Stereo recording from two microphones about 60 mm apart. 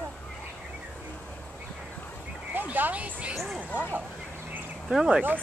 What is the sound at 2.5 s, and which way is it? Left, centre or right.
Speech, right.